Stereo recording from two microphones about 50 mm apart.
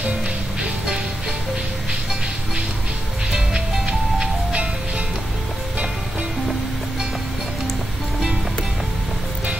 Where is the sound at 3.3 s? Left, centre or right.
Centre.